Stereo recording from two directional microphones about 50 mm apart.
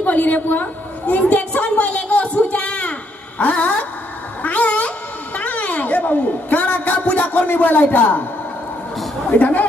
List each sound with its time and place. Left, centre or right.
0.0 s a woman's voice: left
1.3 s a sound: left
4.4 s cat: left
9.4 s speech: left